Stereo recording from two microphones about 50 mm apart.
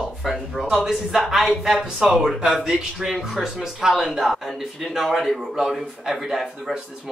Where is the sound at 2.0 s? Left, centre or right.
Centre.